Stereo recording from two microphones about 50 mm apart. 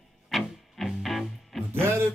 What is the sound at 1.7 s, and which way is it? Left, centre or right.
Music, right.